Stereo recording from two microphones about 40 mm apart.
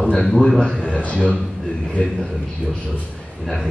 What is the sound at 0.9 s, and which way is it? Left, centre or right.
Speech, left.